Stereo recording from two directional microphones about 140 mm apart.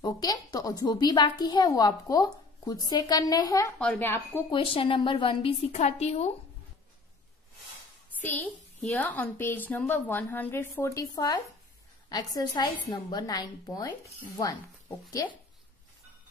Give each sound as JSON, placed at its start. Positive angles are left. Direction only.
{"t": 0.0, "sound": "a woman's voice", "side_deg": 25}
{"t": 3.7, "sound": "a woman's voice", "side_deg": 10}
{"t": 4.5, "sound": "a woman's voice", "side_deg": 40}
{"t": 8.2, "sound": "a woman's voice", "side_deg": 10}